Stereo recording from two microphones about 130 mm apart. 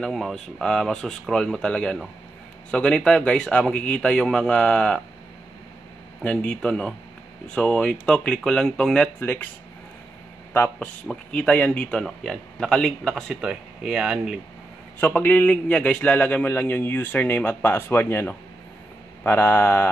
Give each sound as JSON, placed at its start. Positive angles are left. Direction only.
{"t": 0.0, "sound": "a man's voice", "side_deg": 5}
{"t": 6.2, "sound": "a man's voice", "side_deg": 10}
{"t": 10.5, "sound": "speech", "side_deg": 15}
{"t": 15.0, "sound": "a man's voice", "side_deg": 15}